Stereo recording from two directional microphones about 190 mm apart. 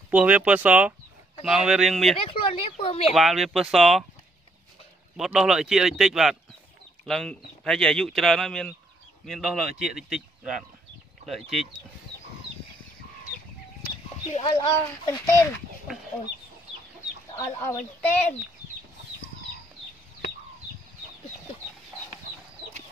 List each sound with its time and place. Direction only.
0.1 s speech: 5° right (ahead or behind)
2.1 s speech: 30° left (ahead or behind)
3.1 s speech: centre (ahead or behind)
5.1 s speech: centre (ahead or behind)
14.4 s speech: 20° left (ahead or behind)
17.4 s speech: 15° left (ahead or behind)